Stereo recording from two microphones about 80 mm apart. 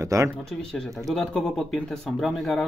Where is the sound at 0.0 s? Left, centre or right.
Right.